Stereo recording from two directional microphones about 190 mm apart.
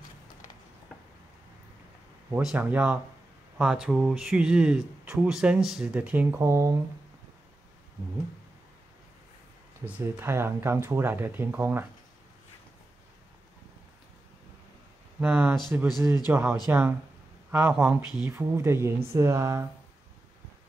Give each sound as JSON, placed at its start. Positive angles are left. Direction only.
{"t": 2.3, "sound": "speech", "side_deg": -5}
{"t": 9.8, "sound": "speech", "side_deg": -10}
{"t": 15.1, "sound": "speech", "side_deg": -10}